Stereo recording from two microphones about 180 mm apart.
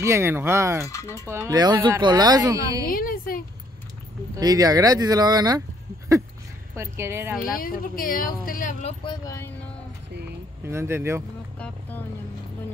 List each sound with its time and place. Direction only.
0.0 s speech: 15° right (ahead or behind)
0.8 s speech: 15° left (ahead or behind)
1.2 s speech: 15° right (ahead or behind)
2.9 s speech: 55° left (ahead or behind)
4.4 s speech: 20° right (ahead or behind)
6.7 s speech: 15° right (ahead or behind)
7.4 s speech: 55° left (ahead or behind)
9.0 s speech: 20° left (ahead or behind)
10.6 s speech: 15° right (ahead or behind)